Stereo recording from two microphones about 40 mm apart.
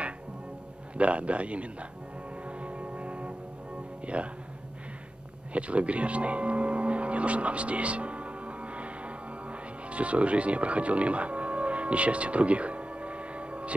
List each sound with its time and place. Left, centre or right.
0.9 s a man's voice: right
2.4 s music: right
4.0 s speech: right
5.5 s music: right